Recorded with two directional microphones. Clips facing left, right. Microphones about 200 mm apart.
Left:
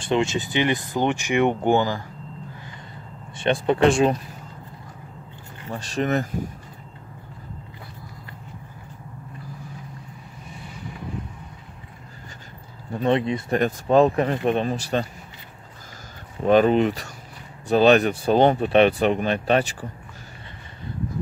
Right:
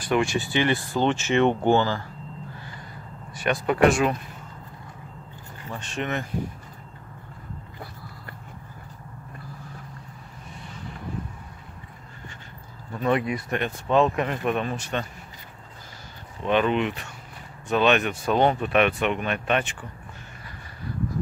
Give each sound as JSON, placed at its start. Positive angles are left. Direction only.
{"t": 0.0, "sound": "speech", "side_deg": 20}
{"t": 3.3, "sound": "speech", "side_deg": 25}
{"t": 5.7, "sound": "speech", "side_deg": 35}
{"t": 12.9, "sound": "speech", "side_deg": 30}
{"t": 13.6, "sound": "speech", "side_deg": 40}
{"t": 16.4, "sound": "speech", "side_deg": 40}